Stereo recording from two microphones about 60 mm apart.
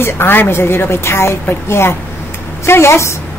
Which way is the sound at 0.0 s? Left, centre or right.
Left.